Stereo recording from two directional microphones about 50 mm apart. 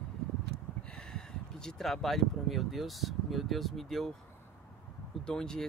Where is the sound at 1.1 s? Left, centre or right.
Centre.